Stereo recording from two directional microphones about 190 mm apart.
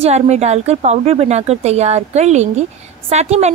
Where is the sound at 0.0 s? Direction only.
35° right (ahead or behind).